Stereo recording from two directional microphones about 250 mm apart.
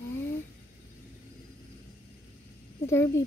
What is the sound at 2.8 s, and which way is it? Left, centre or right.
Speech, centre.